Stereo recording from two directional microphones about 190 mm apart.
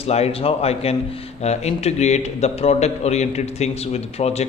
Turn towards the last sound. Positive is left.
turn(degrees=35)  # may be behind; listen again after turning